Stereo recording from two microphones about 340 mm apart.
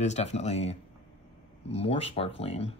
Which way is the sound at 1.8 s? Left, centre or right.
Centre.